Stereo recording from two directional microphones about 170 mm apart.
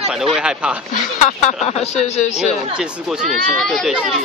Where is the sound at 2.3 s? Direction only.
Centre (ahead or behind).